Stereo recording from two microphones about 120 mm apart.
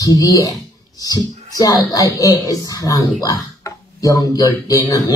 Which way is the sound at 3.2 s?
30° left (ahead or behind).